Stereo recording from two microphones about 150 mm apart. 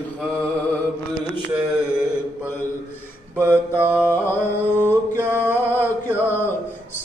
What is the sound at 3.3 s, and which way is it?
Mantra, 15° right (ahead or behind).